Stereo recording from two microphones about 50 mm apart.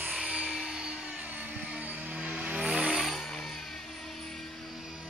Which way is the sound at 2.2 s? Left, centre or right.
Right.